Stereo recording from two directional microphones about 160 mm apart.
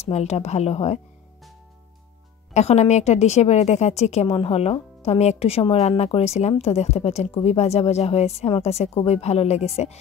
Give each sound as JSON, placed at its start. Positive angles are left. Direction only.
{"t": 0.0, "sound": "a woman's voice", "side_deg": 45}
{"t": 2.5, "sound": "a woman's voice", "side_deg": 45}